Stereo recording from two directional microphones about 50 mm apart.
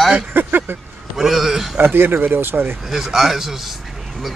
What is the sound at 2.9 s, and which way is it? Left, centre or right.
Speech, centre.